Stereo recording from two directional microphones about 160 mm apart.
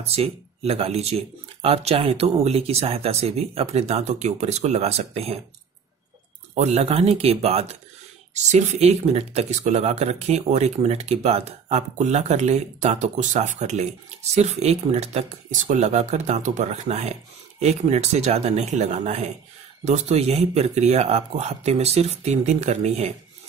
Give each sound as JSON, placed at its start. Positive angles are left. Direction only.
{"t": 0.0, "sound": "speech", "side_deg": -40}
{"t": 6.5, "sound": "speech", "side_deg": -45}